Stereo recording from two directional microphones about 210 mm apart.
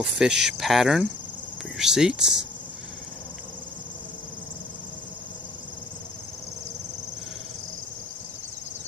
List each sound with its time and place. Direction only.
0.0 s speech: centre (ahead or behind)